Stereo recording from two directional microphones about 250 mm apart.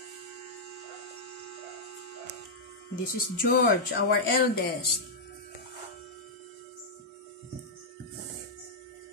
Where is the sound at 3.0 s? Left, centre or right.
Left.